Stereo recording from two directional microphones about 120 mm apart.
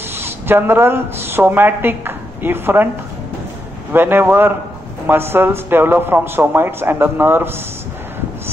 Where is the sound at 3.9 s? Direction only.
15° right (ahead or behind).